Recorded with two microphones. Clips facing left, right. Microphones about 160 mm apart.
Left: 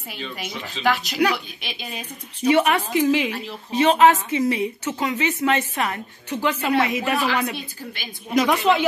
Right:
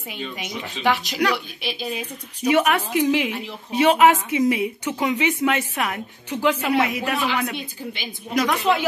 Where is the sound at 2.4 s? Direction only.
10° right (ahead or behind).